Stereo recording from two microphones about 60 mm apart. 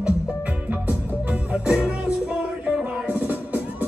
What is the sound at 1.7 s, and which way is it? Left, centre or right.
Music, centre.